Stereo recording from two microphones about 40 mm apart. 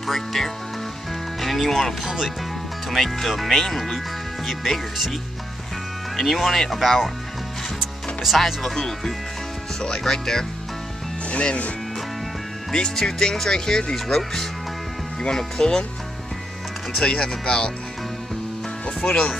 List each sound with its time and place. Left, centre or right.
0.0 s speech: centre
6.1 s speech: centre
7.8 s music: centre
8.7 s speech: centre
11.4 s speech: left
12.7 s speech: centre
17.2 s speech: centre
19.0 s speech: left